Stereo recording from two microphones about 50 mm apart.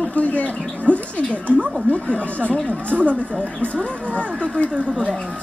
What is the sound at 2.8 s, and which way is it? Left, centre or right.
Speech, right.